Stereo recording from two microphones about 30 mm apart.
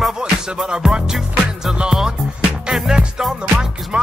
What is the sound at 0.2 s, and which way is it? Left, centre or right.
Music, right.